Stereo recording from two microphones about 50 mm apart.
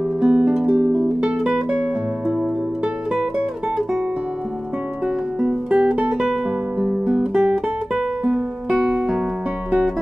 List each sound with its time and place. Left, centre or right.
0.2 s music: centre
5.0 s music: centre
7.3 s music: centre
8.2 s music: centre